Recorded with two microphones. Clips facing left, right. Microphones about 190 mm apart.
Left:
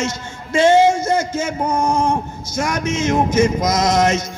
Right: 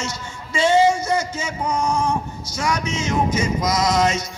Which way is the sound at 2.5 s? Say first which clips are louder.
Left 3 dB; 50° left (ahead or behind).